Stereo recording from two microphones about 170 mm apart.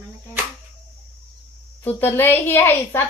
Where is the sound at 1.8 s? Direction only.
10° left (ahead or behind).